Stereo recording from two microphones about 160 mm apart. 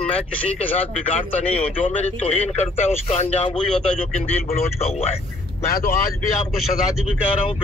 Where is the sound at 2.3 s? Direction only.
45° left (ahead or behind).